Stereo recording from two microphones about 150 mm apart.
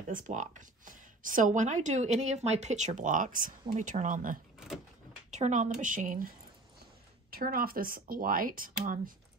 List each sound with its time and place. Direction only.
0.1 s a woman's voice: 60° right (ahead or behind)
7.2 s speech: 85° right; by 9.1 s 65° right (ahead or behind)